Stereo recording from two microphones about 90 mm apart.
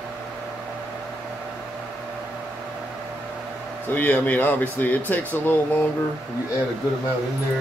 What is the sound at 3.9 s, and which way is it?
Speech, 20° left (ahead or behind).